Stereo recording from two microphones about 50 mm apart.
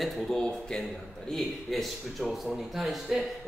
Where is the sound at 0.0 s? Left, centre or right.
Centre.